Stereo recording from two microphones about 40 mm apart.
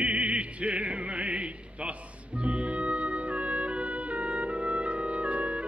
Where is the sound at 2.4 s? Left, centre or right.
Right.